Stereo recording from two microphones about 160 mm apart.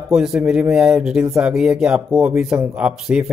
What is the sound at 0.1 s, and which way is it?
Speech, 5° right (ahead or behind).